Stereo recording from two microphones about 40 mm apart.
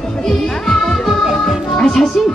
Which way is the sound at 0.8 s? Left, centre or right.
Centre.